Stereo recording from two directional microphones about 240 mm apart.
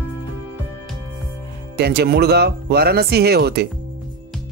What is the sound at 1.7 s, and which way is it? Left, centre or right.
Speech, right.